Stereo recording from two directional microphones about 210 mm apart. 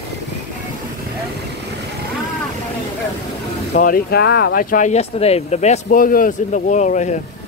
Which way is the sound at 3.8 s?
45° left (ahead or behind).